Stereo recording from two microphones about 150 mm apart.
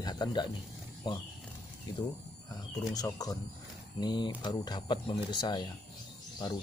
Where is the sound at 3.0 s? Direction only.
25° left (ahead or behind).